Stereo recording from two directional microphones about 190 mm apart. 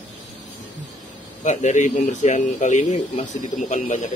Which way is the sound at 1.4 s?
40° left (ahead or behind).